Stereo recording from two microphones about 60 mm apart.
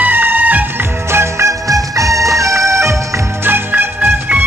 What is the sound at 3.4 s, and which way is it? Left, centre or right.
Music, right.